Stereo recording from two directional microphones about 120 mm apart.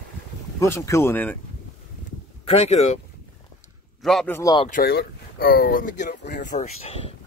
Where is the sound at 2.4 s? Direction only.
60° left (ahead or behind).